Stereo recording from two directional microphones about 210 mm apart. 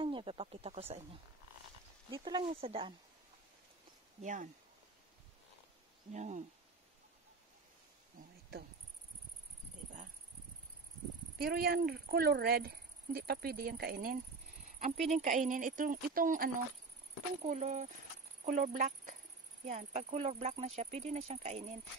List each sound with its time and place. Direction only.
0.0 s speech: 25° right (ahead or behind)
2.0 s speech: 20° right (ahead or behind)
4.2 s speech: 35° right (ahead or behind)
6.1 s speech: 35° right (ahead or behind)
11.3 s speech: 45° right (ahead or behind)
15.0 s speech: 35° right (ahead or behind)